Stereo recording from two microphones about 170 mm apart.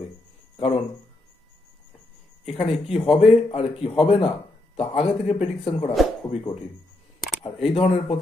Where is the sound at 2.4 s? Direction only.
35° left (ahead or behind).